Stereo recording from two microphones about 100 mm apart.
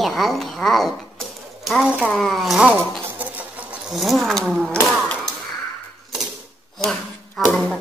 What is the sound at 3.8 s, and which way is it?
Speech, centre (ahead or behind).